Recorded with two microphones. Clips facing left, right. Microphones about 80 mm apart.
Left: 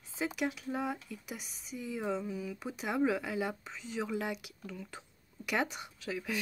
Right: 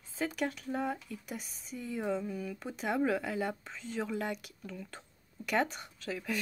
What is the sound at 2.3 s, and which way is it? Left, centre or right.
Speech, right.